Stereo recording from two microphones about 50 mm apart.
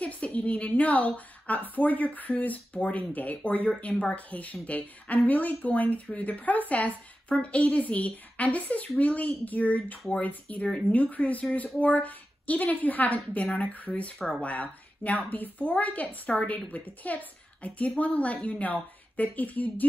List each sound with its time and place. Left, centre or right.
0.0 s a woman's voice: left